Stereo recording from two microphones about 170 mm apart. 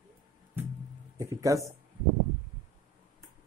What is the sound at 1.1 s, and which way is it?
Speech, 20° right (ahead or behind).